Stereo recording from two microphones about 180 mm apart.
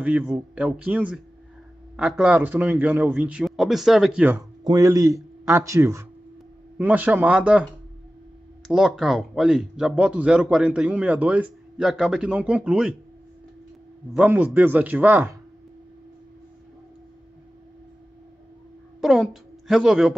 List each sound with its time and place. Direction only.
0.0 s a man's voice: 5° right (ahead or behind)
4.4 s a man's voice: 20° right (ahead or behind)
8.6 s speech: centre (ahead or behind)
14.1 s a man's voice: 10° right (ahead or behind)
18.9 s a woman's voice: centre (ahead or behind)